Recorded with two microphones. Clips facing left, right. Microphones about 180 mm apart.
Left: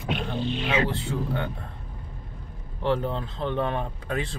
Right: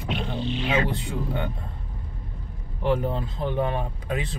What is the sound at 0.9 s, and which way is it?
Speech, 15° right (ahead or behind).